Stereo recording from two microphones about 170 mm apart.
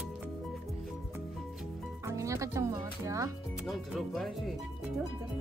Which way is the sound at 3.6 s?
Centre (ahead or behind).